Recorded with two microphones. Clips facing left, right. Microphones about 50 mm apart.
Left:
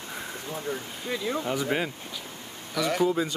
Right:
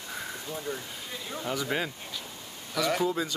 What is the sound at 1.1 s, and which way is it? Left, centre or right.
Speech, left.